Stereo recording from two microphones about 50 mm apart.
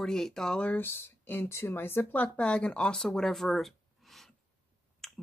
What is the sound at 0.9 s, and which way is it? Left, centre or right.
Speech, left.